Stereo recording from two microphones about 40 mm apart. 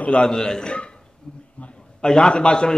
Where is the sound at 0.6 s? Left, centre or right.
Left.